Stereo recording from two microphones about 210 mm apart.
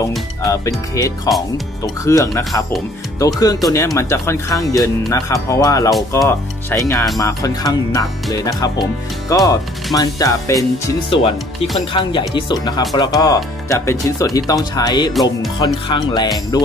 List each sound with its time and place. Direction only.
0.4 s speech: 15° left (ahead or behind)
11.9 s speech: 25° left (ahead or behind)